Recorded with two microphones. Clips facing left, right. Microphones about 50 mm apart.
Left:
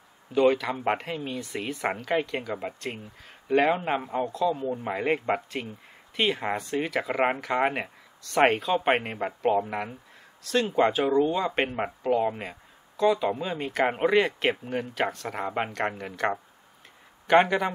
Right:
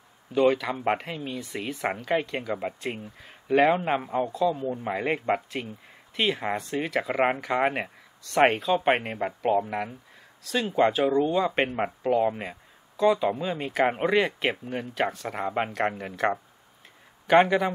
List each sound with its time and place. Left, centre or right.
0.3 s speech: centre